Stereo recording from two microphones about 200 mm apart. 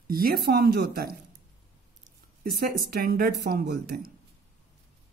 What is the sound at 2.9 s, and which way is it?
Speech, 50° right (ahead or behind).